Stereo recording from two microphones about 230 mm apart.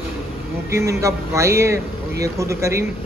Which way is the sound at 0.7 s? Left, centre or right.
Centre.